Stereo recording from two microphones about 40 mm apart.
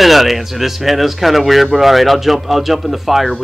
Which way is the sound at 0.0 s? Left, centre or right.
Centre.